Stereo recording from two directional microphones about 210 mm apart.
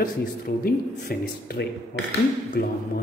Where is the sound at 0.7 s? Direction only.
45° left (ahead or behind).